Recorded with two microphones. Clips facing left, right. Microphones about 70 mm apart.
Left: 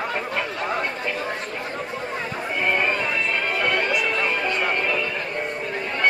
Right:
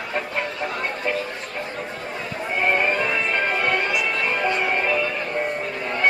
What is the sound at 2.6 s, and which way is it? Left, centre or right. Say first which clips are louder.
Music: right 2 dB; centre.